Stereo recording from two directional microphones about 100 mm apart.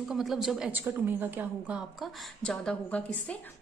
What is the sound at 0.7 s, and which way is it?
A woman's voice, 20° right (ahead or behind).